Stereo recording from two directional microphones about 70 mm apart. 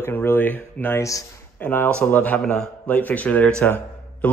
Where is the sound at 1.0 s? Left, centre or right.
Left.